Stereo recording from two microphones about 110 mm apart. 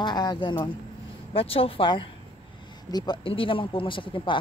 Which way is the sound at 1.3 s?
60° left (ahead or behind).